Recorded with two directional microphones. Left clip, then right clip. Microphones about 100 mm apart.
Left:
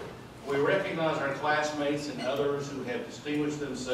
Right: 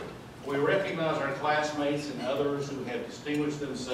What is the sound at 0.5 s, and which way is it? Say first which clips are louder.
A man's voice: even; 5° left (ahead or behind).